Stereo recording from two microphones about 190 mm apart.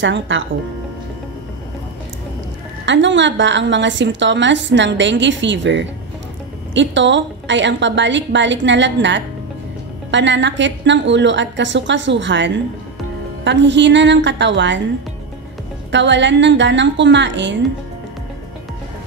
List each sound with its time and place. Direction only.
0.0 s a woman's voice: 80° right
2.8 s a woman's voice: 70° right (ahead or behind)
15.9 s a woman's voice: 70° right (ahead or behind)